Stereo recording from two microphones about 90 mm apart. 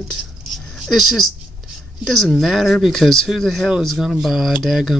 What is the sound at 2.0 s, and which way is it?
Speech, 5° left (ahead or behind).